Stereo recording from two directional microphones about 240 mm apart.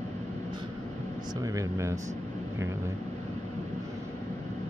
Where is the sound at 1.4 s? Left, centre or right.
Centre.